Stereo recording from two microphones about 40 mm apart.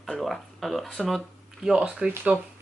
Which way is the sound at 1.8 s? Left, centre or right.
Right.